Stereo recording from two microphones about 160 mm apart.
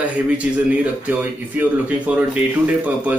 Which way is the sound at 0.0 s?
10° right (ahead or behind).